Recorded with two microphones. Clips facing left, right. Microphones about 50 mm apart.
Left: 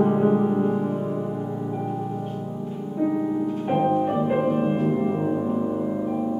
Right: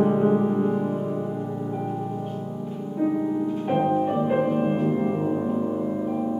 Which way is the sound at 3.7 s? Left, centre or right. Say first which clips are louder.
Left 1 dB; centre.